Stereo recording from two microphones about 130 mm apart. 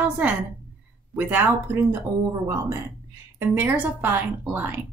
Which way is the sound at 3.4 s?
15° right (ahead or behind).